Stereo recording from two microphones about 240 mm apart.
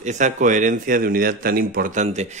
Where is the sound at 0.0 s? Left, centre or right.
Right.